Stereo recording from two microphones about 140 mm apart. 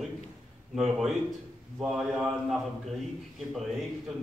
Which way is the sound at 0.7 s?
Centre (ahead or behind).